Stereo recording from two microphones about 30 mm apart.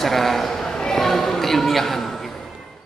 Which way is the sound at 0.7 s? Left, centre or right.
Left.